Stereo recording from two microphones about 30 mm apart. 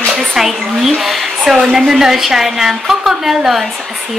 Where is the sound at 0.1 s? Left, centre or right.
Centre.